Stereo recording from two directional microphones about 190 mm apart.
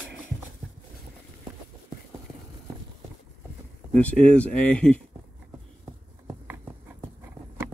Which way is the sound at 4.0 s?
5° left (ahead or behind).